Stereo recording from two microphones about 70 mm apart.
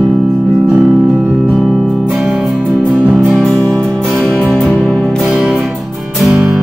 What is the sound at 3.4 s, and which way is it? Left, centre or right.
Music, centre.